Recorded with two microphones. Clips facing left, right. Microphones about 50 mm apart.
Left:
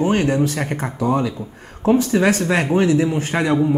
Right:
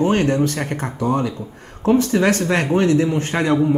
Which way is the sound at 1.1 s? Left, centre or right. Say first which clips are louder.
Left 1 dB; left.